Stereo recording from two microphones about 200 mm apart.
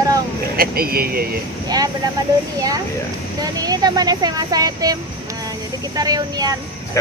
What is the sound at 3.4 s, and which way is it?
Speech, 20° right (ahead or behind).